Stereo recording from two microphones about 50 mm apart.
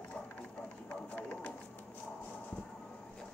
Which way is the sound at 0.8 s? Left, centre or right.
Left.